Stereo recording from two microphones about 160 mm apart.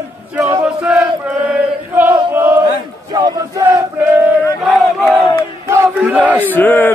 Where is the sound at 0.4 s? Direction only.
20° right (ahead or behind).